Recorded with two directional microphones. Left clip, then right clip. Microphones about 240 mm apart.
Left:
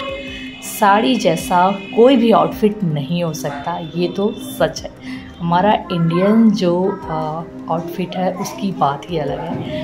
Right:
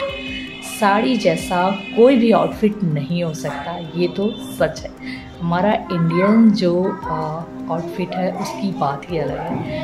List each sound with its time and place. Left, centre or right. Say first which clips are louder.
0.7 s speech: left 3 dB; centre